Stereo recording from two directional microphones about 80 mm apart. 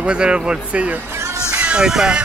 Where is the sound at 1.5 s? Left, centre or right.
Centre.